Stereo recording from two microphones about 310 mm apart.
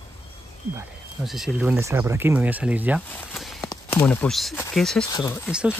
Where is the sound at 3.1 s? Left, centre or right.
Centre.